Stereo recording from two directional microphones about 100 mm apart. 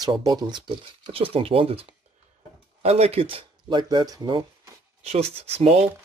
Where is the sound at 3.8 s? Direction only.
45° right (ahead or behind).